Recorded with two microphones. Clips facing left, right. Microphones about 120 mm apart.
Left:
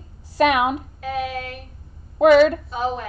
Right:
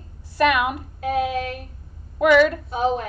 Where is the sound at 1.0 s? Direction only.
25° right (ahead or behind).